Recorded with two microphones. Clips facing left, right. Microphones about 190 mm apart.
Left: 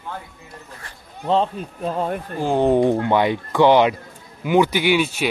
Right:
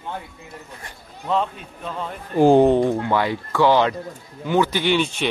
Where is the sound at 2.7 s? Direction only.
20° left (ahead or behind).